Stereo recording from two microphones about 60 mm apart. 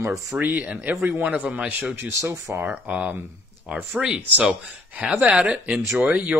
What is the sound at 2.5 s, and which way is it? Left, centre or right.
Speech, right.